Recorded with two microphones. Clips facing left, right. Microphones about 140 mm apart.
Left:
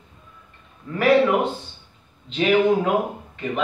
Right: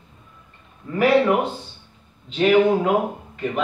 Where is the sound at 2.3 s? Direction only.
Centre (ahead or behind).